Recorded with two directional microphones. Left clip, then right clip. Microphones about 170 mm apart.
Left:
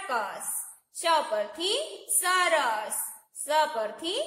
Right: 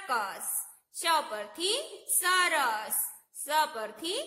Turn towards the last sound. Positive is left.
turn(degrees=-30)  # may be behind; listen again after turning